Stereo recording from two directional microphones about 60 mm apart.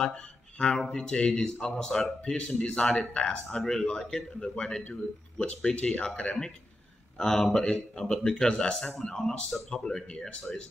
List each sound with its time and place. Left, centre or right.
0.0 s speech: centre